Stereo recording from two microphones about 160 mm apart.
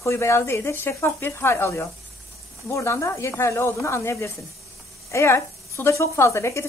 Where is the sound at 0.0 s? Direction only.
15° left (ahead or behind).